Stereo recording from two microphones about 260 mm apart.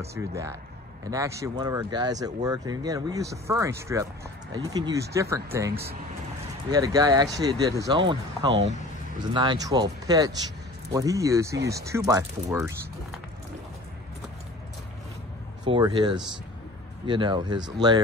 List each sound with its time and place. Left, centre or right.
0.1 s speech: centre
6.7 s speech: centre
8.5 s speech: right
9.3 s speech: centre
15.6 s speech: centre